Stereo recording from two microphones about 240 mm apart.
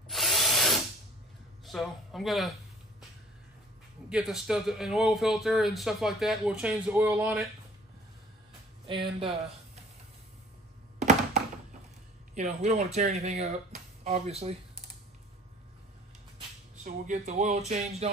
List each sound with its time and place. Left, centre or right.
0.1 s drill: centre
1.7 s a man's voice: centre
4.1 s a man's voice: centre
8.8 s speech: right
11.0 s thunk: right
12.4 s speech: right
16.8 s speech: right